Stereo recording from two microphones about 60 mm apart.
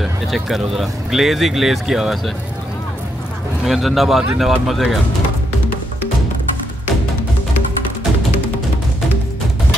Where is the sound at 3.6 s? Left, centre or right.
Centre.